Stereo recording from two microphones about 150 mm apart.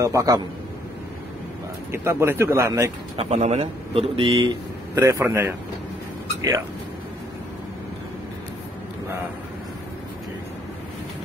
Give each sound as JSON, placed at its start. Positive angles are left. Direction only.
{"t": 0.0, "sound": "a man's voice", "side_deg": -25}
{"t": 1.9, "sound": "speech", "side_deg": -15}
{"t": 3.2, "sound": "speech", "side_deg": -45}
{"t": 4.4, "sound": "speech", "side_deg": -20}